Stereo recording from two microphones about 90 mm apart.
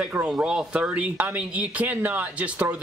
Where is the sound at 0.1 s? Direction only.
10° right (ahead or behind).